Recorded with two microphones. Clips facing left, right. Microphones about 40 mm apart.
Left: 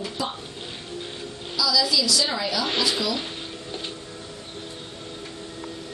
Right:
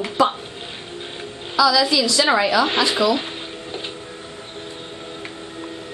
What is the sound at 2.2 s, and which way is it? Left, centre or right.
Speech, right.